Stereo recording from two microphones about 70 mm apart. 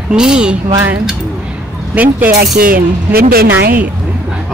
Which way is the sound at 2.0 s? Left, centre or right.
Right.